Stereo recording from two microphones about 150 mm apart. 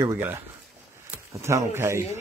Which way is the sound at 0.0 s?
15° right (ahead or behind).